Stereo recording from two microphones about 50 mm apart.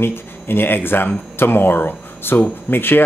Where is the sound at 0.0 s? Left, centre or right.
Left.